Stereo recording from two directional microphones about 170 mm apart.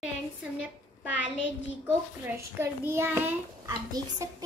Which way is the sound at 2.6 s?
15° right (ahead or behind).